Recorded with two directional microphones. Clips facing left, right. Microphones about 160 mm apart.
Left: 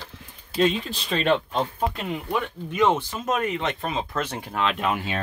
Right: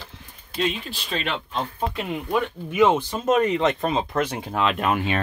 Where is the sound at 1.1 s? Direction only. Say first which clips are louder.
Left 6 dB; 40° left (ahead or behind).